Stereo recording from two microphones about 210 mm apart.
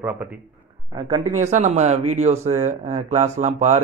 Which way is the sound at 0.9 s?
30° right (ahead or behind).